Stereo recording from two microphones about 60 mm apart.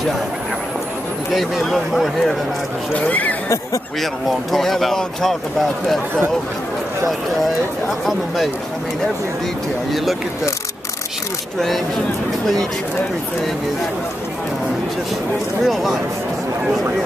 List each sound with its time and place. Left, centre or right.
1.3 s speech: centre
2.9 s speech: left
4.0 s speech: centre
15.6 s speech: centre